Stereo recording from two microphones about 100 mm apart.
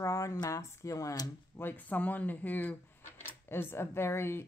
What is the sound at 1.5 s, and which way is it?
Speech, 20° left (ahead or behind).